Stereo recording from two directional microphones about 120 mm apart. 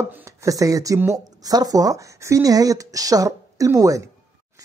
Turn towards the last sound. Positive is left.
turn(degrees=-25)  # may be behind; listen again after turning